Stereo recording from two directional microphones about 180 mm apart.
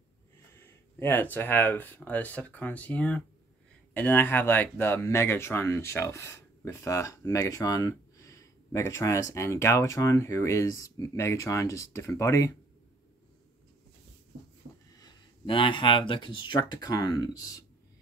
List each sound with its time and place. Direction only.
0.6 s speech: 10° left (ahead or behind)
15.0 s speech: 25° left (ahead or behind)